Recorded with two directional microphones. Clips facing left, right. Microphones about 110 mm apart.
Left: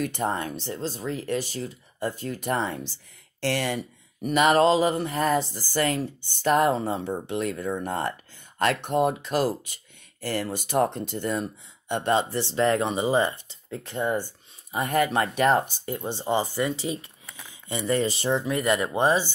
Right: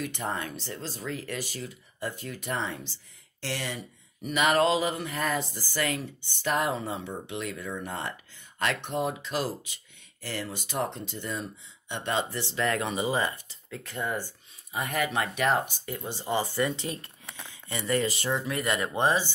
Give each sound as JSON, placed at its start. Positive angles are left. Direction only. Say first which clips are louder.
{"t": 0.0, "sound": "speech", "louder": "left 5 dB", "side_deg": 40}
{"t": 3.3, "sound": "speech", "louder": "left 8 dB", "side_deg": 60}
{"t": 4.3, "sound": "speech", "louder": "left 5 dB", "side_deg": 35}
{"t": 11.9, "sound": "speech", "louder": "left 6 dB", "side_deg": 40}
{"t": 14.7, "sound": "speech", "louder": "left 6 dB", "side_deg": 35}
{"t": 16.5, "sound": "a sound", "louder": "left 2 dB", "side_deg": 5}
{"t": 17.6, "sound": "speech", "louder": "left 3 dB", "side_deg": 25}